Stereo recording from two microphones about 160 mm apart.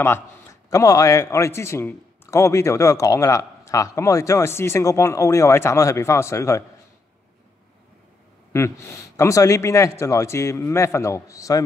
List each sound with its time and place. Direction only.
0.0 s a man's voice: 15° left (ahead or behind)
8.5 s a man's voice: 20° left (ahead or behind)